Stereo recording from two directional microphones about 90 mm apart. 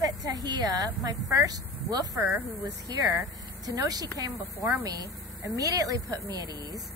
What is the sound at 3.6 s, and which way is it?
A woman's voice, 45° right (ahead or behind).